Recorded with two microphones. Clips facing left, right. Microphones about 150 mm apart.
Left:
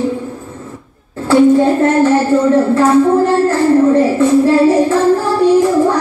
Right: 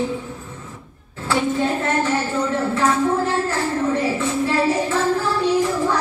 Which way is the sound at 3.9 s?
50° left (ahead or behind).